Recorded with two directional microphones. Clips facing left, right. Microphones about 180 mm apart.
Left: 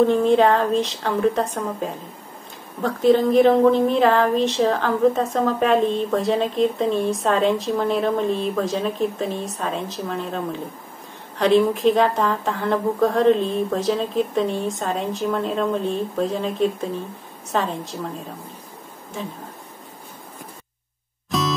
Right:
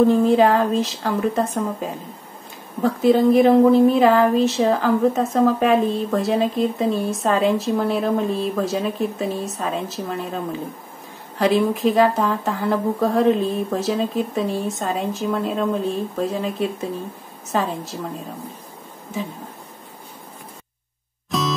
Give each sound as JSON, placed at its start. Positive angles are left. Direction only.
{"t": 0.0, "sound": "a woman's voice", "side_deg": -5}
{"t": 21.3, "sound": "music", "side_deg": 0}